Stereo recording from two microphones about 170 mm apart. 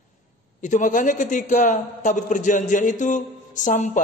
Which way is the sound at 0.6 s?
45° left (ahead or behind).